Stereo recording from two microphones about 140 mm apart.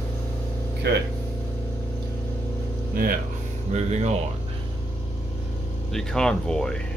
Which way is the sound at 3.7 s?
55° right (ahead or behind).